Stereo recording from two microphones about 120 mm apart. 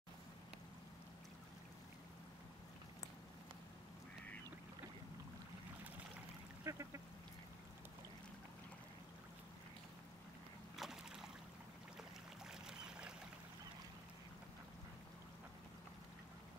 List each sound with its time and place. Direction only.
6.6 s duck: 25° right (ahead or behind)
10.8 s a sound: 5° right (ahead or behind)
12.4 s boat: 5° right (ahead or behind)